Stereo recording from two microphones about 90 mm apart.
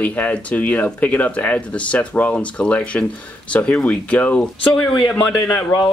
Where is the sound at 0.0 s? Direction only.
15° left (ahead or behind).